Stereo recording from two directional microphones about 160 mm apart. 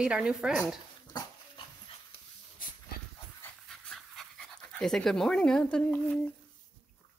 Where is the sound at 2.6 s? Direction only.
60° left (ahead or behind).